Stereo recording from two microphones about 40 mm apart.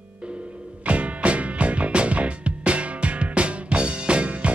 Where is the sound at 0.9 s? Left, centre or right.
Right.